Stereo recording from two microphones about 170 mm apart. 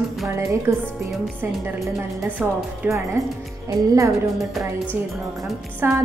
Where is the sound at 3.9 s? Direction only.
20° right (ahead or behind).